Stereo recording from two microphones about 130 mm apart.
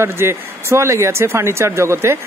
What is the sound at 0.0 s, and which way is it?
Speech, 20° right (ahead or behind).